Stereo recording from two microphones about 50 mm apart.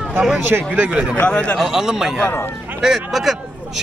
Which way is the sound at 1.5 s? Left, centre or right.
Centre.